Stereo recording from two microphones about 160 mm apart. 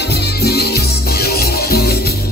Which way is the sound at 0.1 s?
90° left.